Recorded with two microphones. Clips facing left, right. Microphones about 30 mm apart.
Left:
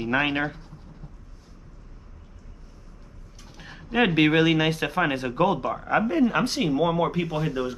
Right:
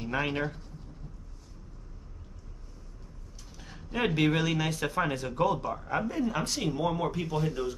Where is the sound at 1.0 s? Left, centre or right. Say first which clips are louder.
Left 2 dB; left.